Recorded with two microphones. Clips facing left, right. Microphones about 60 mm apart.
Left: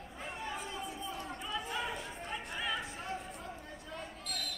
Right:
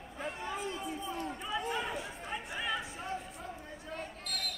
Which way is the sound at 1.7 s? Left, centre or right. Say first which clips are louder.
Right 2 dB; centre.